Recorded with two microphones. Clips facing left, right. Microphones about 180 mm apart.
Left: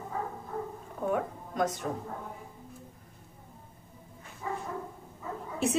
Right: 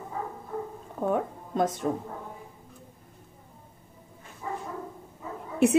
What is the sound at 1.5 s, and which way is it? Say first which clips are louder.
Speech: right 4 dB; 30° right (ahead or behind).